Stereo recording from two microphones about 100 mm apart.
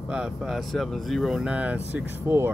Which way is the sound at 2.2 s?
25° right (ahead or behind).